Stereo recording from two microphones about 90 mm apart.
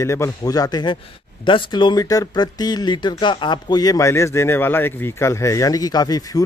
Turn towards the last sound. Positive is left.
turn(degrees=45)  # may be behind; listen again after turning